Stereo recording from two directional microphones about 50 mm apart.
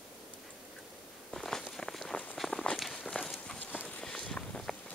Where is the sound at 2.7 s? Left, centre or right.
Centre.